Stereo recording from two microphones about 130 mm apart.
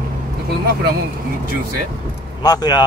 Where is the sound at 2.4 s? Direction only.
30° left (ahead or behind).